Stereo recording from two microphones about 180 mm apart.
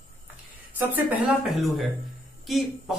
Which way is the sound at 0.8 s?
10° right (ahead or behind).